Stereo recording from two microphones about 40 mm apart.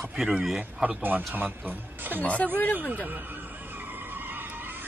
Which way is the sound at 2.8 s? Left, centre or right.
Right.